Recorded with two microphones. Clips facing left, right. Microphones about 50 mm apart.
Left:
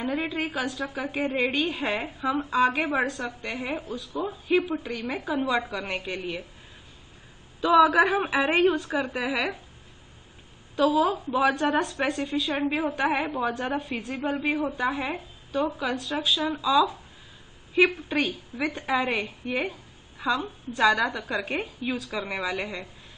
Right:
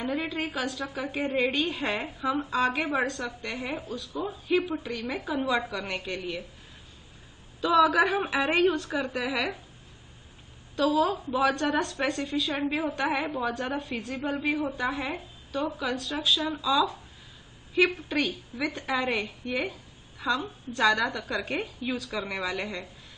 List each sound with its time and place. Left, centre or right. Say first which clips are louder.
0.0 s a woman's voice: left 2 dB; centre
7.6 s a woman's voice: left 3 dB; centre
10.8 s a woman's voice: left 2 dB; centre